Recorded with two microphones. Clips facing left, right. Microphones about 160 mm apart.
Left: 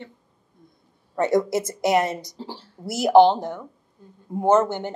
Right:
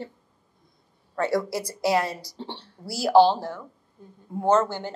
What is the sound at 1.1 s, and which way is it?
A woman's voice, 20° left (ahead or behind).